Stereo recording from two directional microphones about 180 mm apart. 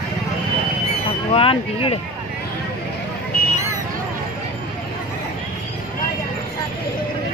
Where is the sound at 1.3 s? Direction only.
30° left (ahead or behind).